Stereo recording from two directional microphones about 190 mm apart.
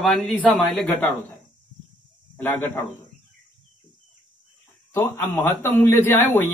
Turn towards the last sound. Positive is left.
turn(degrees=10)  # may be behind; listen again after turning